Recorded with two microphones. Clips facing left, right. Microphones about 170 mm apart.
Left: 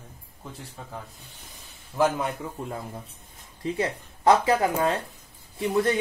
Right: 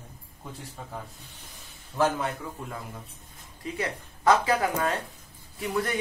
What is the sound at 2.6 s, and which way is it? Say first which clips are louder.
Speech: left 4 dB; 35° left (ahead or behind).